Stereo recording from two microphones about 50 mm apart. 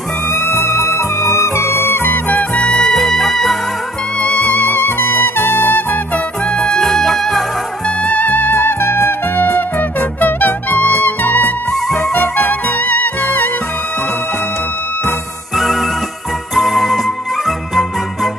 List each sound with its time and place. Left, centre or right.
0.3 s music: left
2.5 s music: centre
3.0 s music: centre
4.2 s music: left
6.1 s music: left
6.8 s music: centre
7.8 s music: left
8.8 s music: left
11.7 s music: centre
12.1 s music: left
15.5 s music: centre